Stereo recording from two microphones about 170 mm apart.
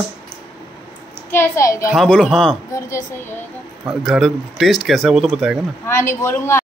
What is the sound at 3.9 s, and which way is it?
Speech, 5° right (ahead or behind).